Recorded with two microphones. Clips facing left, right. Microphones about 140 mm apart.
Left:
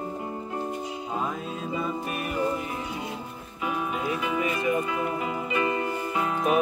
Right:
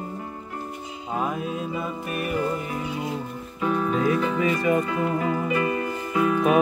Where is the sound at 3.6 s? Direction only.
10° left (ahead or behind); by 6.4 s 25° left (ahead or behind).